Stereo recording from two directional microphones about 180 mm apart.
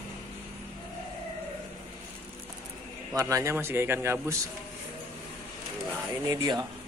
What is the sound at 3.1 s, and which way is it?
Speech, 20° right (ahead or behind).